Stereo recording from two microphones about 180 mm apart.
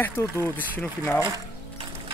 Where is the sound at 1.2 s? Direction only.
25° right (ahead or behind).